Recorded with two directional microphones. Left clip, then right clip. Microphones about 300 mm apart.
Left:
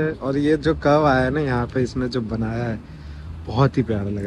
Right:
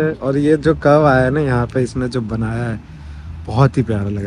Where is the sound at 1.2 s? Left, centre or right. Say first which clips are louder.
Right 5 dB; right.